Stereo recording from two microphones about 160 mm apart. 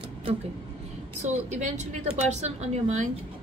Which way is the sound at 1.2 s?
45° right (ahead or behind).